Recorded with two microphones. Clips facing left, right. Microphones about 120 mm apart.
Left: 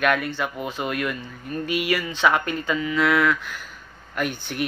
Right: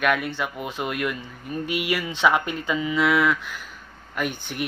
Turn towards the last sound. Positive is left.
turn(degrees=-5)  # may be behind; listen again after turning